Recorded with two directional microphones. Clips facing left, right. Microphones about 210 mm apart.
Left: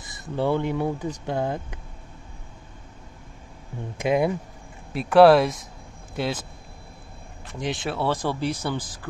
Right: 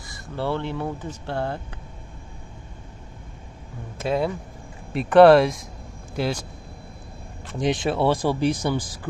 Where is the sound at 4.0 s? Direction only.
15° left (ahead or behind).